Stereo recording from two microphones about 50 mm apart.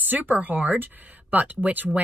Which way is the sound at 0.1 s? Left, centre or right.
Right.